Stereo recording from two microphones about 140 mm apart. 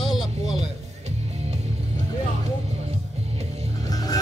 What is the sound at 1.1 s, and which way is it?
Music, 50° right (ahead or behind).